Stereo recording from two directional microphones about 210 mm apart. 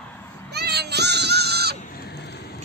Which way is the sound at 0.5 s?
50° right (ahead or behind).